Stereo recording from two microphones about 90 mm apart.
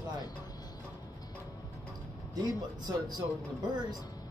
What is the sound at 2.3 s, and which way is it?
Speech, 50° right (ahead or behind).